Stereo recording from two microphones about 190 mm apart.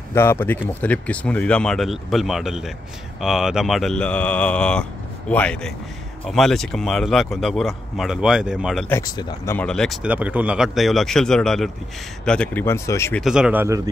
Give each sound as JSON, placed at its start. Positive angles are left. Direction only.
{"t": 0.1, "sound": "speech", "side_deg": 10}
{"t": 8.8, "sound": "speech", "side_deg": 15}
{"t": 9.6, "sound": "speech", "side_deg": 5}
{"t": 13.2, "sound": "speech", "side_deg": -5}